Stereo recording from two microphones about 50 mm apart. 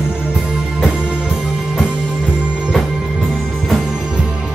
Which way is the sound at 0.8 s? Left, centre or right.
Centre.